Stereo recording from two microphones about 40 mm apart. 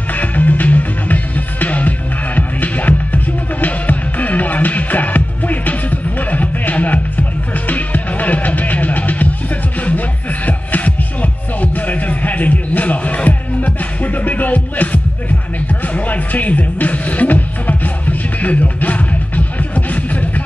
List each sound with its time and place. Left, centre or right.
0.1 s music: left